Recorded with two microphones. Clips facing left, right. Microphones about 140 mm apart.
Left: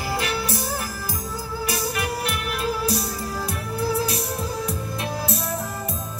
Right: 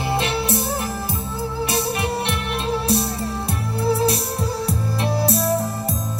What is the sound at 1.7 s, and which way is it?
Music, 30° right (ahead or behind).